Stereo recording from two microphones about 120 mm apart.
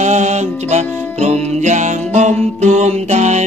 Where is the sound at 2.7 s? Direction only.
75° right (ahead or behind).